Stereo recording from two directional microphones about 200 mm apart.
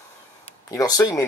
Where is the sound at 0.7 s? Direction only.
20° left (ahead or behind).